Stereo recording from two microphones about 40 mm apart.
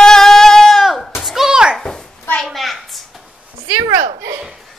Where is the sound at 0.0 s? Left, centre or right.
Centre.